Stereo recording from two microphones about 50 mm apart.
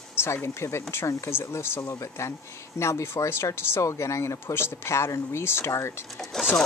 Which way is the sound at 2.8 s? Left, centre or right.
Left.